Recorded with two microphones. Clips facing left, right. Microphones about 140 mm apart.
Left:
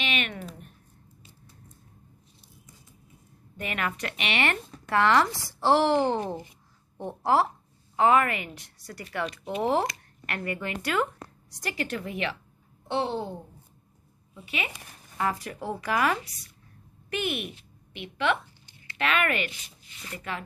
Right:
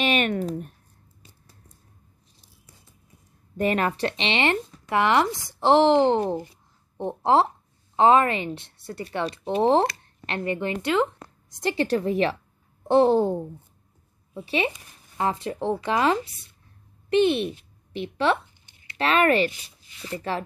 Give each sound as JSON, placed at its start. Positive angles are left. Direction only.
{"t": 0.0, "sound": "speech", "side_deg": -40}
{"t": 3.5, "sound": "a woman's voice", "side_deg": -35}
{"t": 14.3, "sound": "a child's voice", "side_deg": -35}